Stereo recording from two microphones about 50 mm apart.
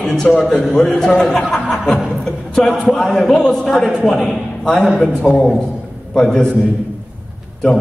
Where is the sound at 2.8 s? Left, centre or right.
Centre.